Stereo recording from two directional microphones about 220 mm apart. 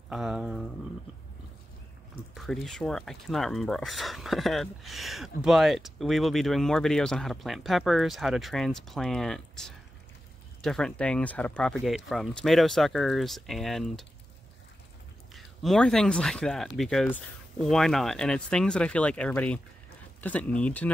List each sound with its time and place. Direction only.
0.1 s speech: 5° right (ahead or behind)
2.3 s speech: centre (ahead or behind)
15.3 s speech: centre (ahead or behind)